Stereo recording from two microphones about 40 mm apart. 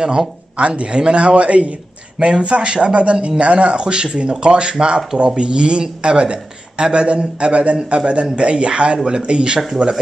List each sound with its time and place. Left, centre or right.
0.0 s speech: right